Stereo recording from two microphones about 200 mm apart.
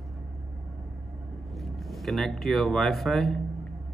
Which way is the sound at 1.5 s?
Centre (ahead or behind).